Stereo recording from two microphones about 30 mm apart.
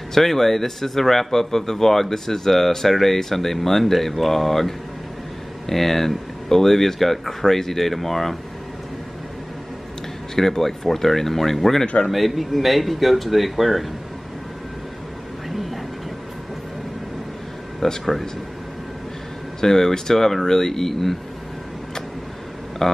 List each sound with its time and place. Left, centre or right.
0.1 s speech: centre
10.3 s speech: centre
15.5 s a sound: centre
17.8 s speech: centre
19.6 s speech: centre
22.8 s speech: centre